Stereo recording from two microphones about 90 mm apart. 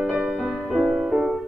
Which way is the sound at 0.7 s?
5° right (ahead or behind).